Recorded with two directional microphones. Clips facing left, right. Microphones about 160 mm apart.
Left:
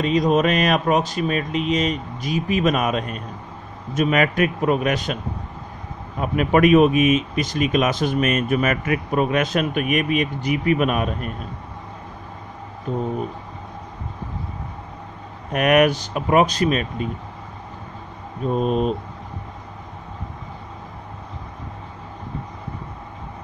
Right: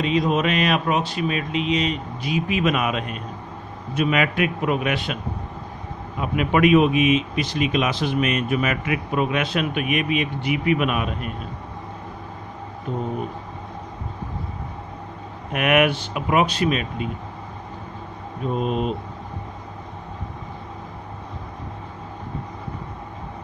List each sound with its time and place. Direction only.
0.0 s speech: 40° left (ahead or behind)
15.5 s speech: 40° left (ahead or behind)
18.6 s speech: 40° left (ahead or behind)